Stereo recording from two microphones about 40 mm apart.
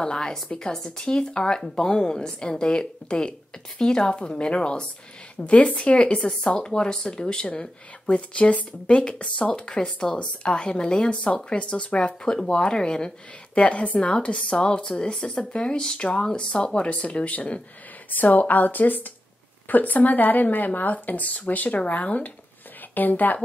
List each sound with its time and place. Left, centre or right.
0.0 s a woman's voice: centre
5.4 s a woman's voice: left
13.6 s speech: left